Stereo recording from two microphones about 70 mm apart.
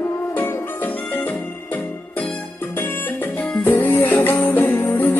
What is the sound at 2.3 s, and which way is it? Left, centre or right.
Music, left.